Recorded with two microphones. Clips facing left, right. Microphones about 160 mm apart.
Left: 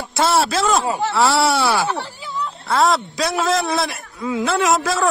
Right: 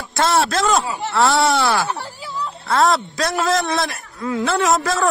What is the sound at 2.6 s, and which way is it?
A man's voice, centre (ahead or behind).